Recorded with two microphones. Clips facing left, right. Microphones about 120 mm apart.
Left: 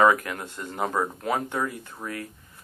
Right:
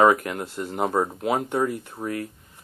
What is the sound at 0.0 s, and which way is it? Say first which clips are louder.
Speech: right 2 dB; 45° right (ahead or behind).